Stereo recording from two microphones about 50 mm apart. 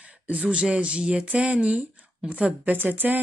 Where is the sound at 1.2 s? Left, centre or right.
Right.